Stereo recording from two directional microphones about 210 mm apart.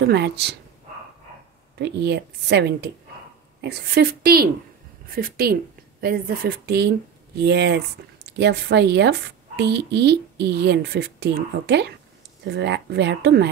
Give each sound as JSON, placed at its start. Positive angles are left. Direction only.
{"t": 0.0, "sound": "a child's voice", "side_deg": -55}
{"t": 1.8, "sound": "a child's voice", "side_deg": -55}